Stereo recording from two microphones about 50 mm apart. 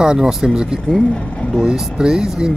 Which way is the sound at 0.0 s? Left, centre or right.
Centre.